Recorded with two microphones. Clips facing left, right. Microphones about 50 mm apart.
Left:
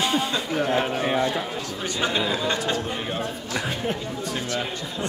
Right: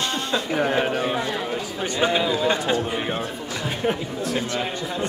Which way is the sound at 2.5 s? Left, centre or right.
Right.